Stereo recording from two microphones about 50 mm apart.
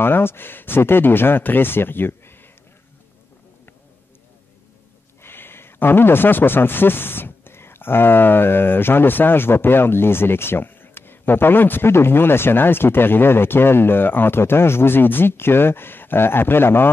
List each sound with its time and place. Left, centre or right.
0.0 s speech: left
5.2 s speech: left